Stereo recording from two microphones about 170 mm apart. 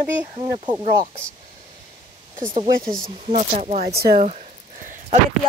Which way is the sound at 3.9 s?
65° right (ahead or behind).